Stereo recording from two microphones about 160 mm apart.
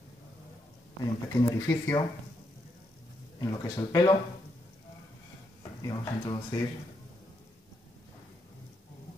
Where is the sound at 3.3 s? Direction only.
20° left (ahead or behind).